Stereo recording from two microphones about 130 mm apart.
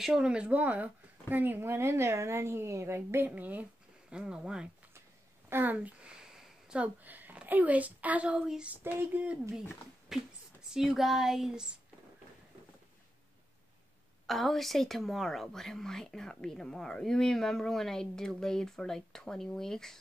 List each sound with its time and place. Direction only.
0.0 s a woman's voice: 5° right (ahead or behind)
14.2 s a woman's voice: centre (ahead or behind)